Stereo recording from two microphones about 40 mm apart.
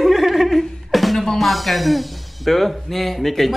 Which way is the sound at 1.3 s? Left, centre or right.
Centre.